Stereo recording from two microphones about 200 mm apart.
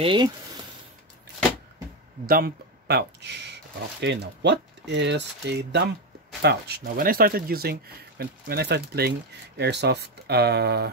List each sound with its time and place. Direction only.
0.0 s speech: 25° right (ahead or behind)
2.2 s speech: 50° right (ahead or behind)